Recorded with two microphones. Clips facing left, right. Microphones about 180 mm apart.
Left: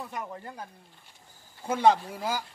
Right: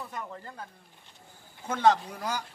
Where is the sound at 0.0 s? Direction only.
15° left (ahead or behind).